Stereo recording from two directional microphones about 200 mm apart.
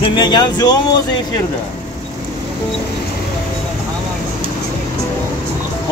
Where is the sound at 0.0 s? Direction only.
20° left (ahead or behind).